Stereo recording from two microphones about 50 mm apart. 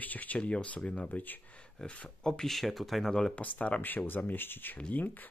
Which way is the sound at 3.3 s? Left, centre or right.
Left.